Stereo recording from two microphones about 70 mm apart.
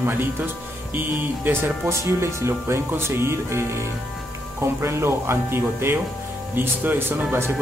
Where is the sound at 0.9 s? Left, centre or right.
Right.